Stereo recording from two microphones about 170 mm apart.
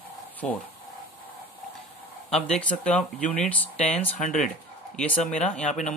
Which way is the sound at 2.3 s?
5° left (ahead or behind).